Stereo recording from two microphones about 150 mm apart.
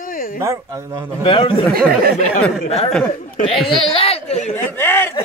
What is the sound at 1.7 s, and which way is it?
Speech, 90° right.